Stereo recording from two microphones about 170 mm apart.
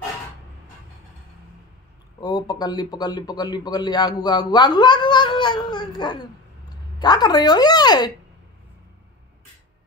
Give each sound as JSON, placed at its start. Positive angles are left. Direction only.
{"t": 2.1, "sound": "speech", "side_deg": 25}